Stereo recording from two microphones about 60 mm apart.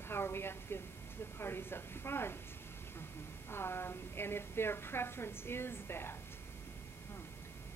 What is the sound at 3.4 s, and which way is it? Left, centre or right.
A woman's voice, left.